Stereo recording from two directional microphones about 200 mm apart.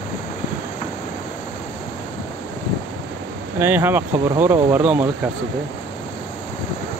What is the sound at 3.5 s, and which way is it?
Speech, 10° right (ahead or behind).